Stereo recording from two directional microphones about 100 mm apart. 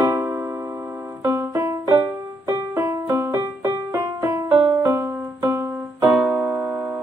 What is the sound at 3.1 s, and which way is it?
Music, 20° right (ahead or behind).